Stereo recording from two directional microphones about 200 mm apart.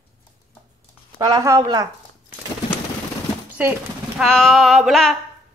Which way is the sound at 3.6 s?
5° right (ahead or behind).